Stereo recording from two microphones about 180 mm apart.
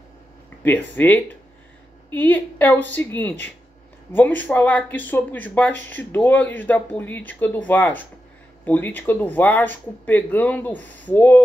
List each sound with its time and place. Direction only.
0.7 s speech: 10° left (ahead or behind)